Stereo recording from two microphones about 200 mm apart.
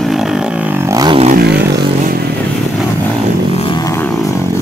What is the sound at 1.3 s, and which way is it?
Vehicle, 55° right (ahead or behind).